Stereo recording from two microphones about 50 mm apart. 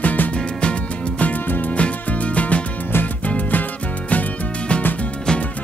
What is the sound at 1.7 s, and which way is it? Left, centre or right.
Music, left.